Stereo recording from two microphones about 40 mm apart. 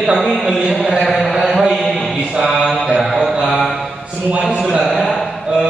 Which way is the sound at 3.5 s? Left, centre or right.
Centre.